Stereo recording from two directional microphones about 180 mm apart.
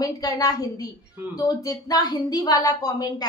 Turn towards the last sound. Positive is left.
turn(degrees=20)  # may be behind; listen again after turning